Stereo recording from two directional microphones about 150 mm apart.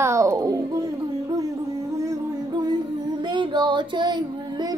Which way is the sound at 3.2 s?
30° right (ahead or behind).